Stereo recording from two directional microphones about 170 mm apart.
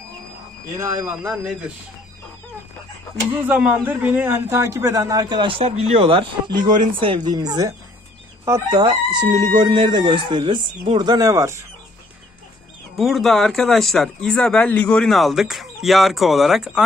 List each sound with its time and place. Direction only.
1.0 s speech: 5° right (ahead or behind)
3.3 s a man's voice: 10° right (ahead or behind)
12.9 s speech: centre (ahead or behind)